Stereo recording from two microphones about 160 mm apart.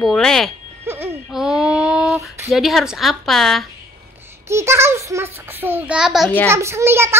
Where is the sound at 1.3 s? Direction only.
5° right (ahead or behind).